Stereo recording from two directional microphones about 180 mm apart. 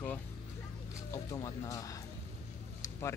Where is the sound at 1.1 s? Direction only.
20° left (ahead or behind).